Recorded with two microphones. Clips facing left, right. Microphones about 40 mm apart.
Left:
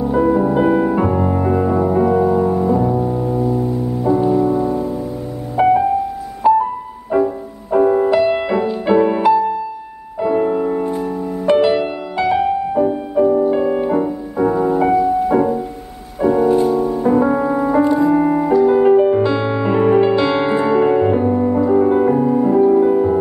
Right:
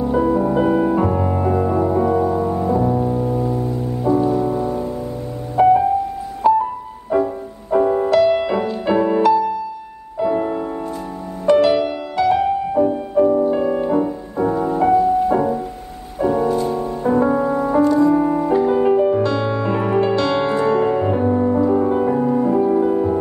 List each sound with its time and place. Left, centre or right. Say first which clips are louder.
0.4 s music: left 2 dB; left
1.1 s music: left 2 dB; centre
5.6 s music: even; centre
6.4 s music: left 2 dB; centre
7.1 s music: left 2 dB; centre
8.5 s music: left 3 dB; centre
9.0 s music: left 1 dB; centre
18.7 s music: left 5 dB; centre
22.1 s music: left 3 dB; centre